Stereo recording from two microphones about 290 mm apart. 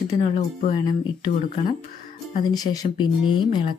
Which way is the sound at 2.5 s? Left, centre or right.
Centre.